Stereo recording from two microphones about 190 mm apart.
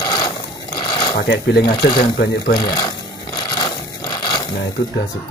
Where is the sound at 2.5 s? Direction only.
20° left (ahead or behind).